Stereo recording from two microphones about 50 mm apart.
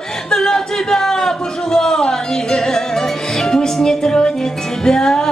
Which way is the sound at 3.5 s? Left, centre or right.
Centre.